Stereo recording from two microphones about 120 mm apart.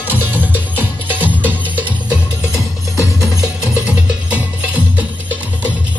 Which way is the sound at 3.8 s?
10° right (ahead or behind).